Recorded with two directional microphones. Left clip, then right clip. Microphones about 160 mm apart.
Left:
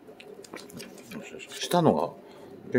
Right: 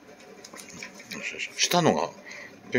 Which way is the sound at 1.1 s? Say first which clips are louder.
Right 9 dB; 20° left (ahead or behind).